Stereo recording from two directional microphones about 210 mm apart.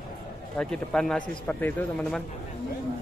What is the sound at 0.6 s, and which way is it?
Speech, 5° left (ahead or behind).